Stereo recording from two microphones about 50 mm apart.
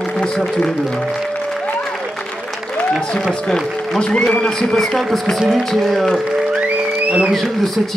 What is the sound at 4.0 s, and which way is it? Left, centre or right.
Speech, centre.